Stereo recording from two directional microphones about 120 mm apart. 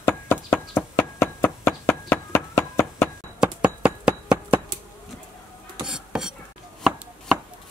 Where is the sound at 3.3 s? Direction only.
5° right (ahead or behind).